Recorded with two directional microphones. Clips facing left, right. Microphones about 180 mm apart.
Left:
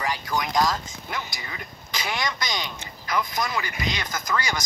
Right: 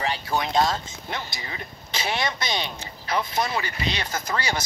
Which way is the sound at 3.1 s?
25° right (ahead or behind).